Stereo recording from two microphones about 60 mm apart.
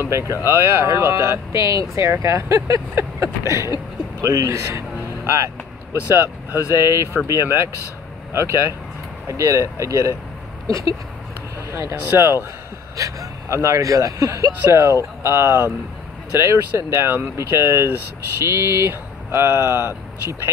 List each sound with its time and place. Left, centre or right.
0.1 s speech: right
6.7 s speech: right
9.3 s speech: right
11.7 s speech: right
12.9 s speech: right
14.7 s speech: right